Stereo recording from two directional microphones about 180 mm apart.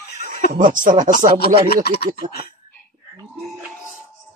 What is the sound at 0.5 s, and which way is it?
Speech, 50° right (ahead or behind).